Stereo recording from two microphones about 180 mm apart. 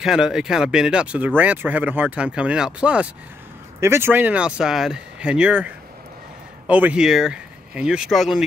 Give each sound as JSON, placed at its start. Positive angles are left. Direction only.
{"t": 0.0, "sound": "speech", "side_deg": -5}
{"t": 6.7, "sound": "speech", "side_deg": -5}